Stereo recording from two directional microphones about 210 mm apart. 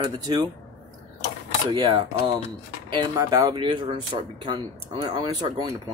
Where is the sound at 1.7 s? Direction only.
20° right (ahead or behind).